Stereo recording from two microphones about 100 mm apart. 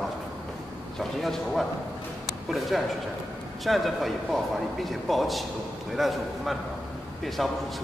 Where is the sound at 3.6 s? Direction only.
Centre (ahead or behind).